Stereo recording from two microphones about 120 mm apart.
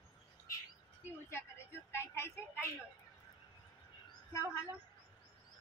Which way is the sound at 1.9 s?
20° left (ahead or behind).